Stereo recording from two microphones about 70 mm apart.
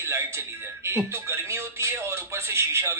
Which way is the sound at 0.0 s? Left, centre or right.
Right.